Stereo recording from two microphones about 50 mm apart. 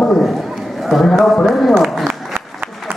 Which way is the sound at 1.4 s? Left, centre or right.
Centre.